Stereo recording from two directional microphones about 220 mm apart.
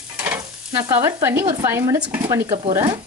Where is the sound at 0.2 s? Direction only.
10° right (ahead or behind).